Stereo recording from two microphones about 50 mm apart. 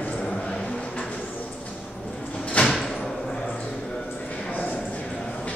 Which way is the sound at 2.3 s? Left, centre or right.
Left.